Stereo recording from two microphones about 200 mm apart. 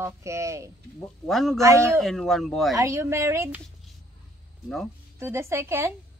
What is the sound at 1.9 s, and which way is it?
Speech, centre (ahead or behind).